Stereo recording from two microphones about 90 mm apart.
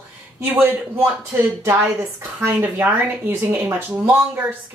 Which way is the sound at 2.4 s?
25° right (ahead or behind).